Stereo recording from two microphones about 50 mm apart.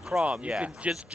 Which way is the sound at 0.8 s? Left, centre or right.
Right.